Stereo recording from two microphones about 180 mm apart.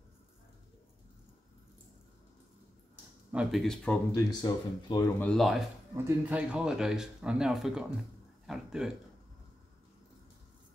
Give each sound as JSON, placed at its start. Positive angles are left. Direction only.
{"t": 3.3, "sound": "speech", "side_deg": -5}
{"t": 4.1, "sound": "speech", "side_deg": 20}
{"t": 5.2, "sound": "speech", "side_deg": 0}
{"t": 5.9, "sound": "speech", "side_deg": -10}